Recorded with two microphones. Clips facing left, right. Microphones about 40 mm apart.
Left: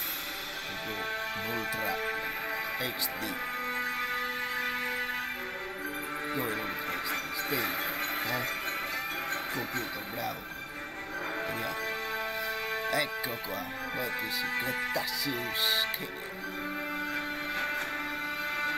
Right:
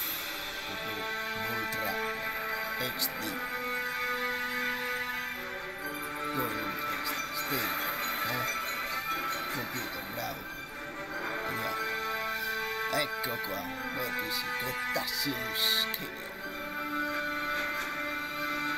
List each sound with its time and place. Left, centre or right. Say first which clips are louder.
1.8 s speech: left 1 dB; left
3.7 s music: even; left
6.4 s speech: even; left
7.1 s music: left 1 dB; centre
7.8 s music: even; left
11.8 s music: right 1 dB; left
12.9 s speech: left 1 dB; centre
14.9 s speech: even; centre
17.1 s music: right 1 dB; left